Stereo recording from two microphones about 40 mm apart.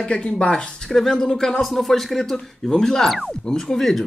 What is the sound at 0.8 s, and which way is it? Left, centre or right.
Speech, centre.